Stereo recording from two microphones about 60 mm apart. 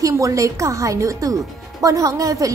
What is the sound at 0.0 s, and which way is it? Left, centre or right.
A woman's voice, right.